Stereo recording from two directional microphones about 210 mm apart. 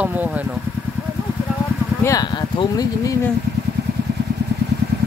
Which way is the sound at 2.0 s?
15° left (ahead or behind).